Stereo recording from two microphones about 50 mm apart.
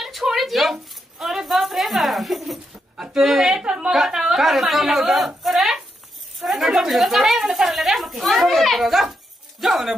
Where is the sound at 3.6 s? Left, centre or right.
Centre.